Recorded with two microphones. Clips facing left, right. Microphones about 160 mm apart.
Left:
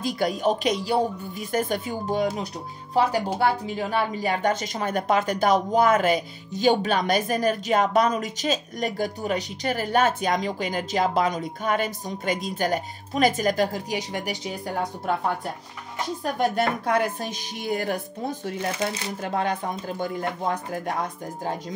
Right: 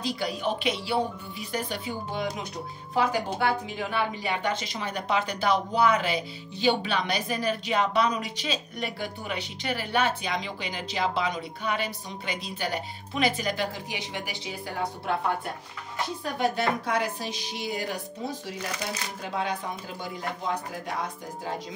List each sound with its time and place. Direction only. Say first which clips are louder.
0.0 s a woman's voice: left 5 dB; 45° left (ahead or behind)
16.3 s a woman's voice: left 2 dB; 55° left (ahead or behind)